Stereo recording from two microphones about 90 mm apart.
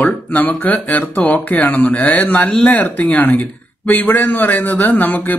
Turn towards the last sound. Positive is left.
turn(degrees=20)  # may be behind; listen again after turning